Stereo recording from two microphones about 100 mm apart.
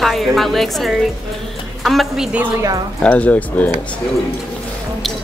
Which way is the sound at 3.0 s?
15° left (ahead or behind).